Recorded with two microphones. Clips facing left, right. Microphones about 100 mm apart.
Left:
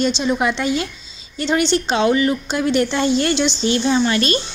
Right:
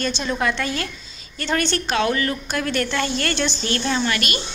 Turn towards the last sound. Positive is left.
turn(degrees=25)  # may be behind; listen again after turning